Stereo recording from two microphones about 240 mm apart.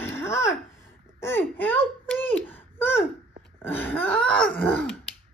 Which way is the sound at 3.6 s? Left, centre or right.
Centre.